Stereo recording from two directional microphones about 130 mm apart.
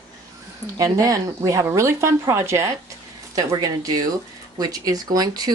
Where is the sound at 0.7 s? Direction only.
25° right (ahead or behind).